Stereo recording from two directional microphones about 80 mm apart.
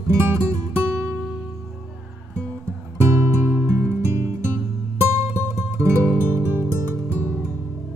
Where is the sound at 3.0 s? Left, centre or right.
Right.